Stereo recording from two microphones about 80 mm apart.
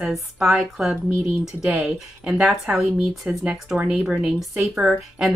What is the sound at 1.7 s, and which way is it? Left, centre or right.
Speech, centre.